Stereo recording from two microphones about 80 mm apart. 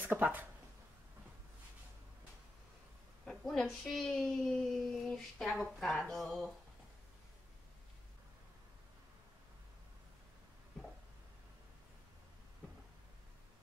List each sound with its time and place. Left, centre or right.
0.0 s speech: right
3.3 s a woman's voice: centre